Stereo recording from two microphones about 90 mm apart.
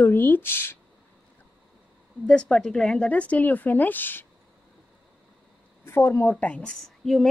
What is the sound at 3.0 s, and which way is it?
A woman's voice, 15° left (ahead or behind).